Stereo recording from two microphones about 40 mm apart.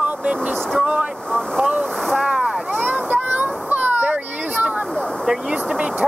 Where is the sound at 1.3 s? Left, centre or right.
Centre.